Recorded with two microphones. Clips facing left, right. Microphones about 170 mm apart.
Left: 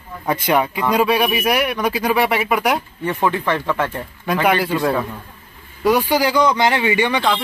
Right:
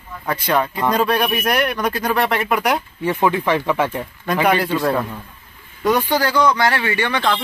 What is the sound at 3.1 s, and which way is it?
Speech, 10° right (ahead or behind).